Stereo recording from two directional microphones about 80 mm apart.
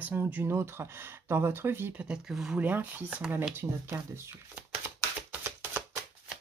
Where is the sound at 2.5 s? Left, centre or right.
Centre.